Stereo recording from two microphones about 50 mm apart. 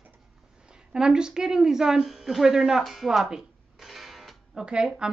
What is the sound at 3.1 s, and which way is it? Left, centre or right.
Music, centre.